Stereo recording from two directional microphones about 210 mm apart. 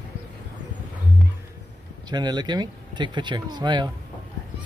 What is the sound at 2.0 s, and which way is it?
Speech, 20° right (ahead or behind).